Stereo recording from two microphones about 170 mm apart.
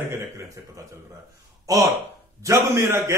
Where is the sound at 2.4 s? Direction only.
15° right (ahead or behind).